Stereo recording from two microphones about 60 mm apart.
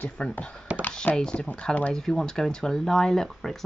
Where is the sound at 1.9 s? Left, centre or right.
Centre.